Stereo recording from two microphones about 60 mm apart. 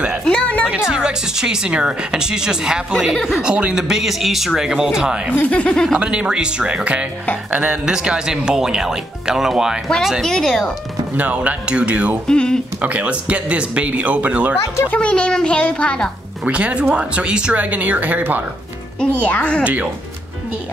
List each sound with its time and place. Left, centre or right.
0.2 s music: centre
0.7 s speech: centre
5.5 s a child's voice: left
6.0 s speech: centre
10.2 s speech: centre
11.1 s speech: right
12.3 s a child's voice: centre
12.8 s speech: right
15.0 s a child's voice: centre
16.4 s speech: right
18.9 s a child's voice: left
19.6 s speech: right